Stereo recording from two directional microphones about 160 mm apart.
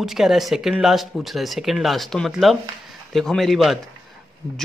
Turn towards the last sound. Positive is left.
turn(degrees=0)  # may be behind; listen again after turning